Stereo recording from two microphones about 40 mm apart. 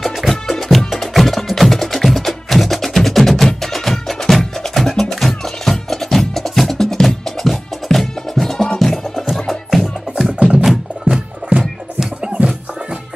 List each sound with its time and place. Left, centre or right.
0.0 s music: centre
8.5 s music: centre
11.4 s music: right